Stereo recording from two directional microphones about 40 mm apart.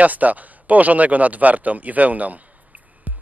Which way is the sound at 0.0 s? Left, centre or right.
Right.